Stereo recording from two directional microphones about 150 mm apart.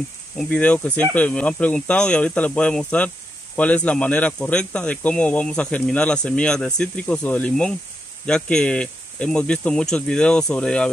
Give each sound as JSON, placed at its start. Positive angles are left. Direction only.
{"t": 0.4, "sound": "speech", "side_deg": 10}